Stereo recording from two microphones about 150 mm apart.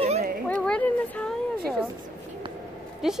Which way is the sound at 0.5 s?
10° left (ahead or behind).